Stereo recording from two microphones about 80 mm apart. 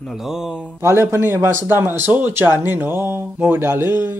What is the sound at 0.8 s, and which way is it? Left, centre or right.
Speech, right.